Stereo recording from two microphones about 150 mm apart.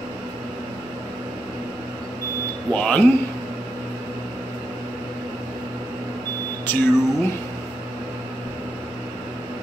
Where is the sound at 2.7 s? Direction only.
10° left (ahead or behind).